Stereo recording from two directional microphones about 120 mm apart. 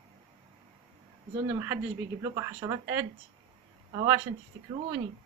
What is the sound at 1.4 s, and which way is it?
Speech, 20° right (ahead or behind).